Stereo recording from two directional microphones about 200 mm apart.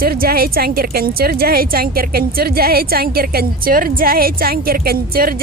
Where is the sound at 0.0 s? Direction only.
50° right (ahead or behind).